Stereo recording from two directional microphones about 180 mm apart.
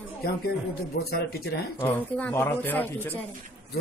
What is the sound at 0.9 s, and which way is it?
Speech, 60° left (ahead or behind).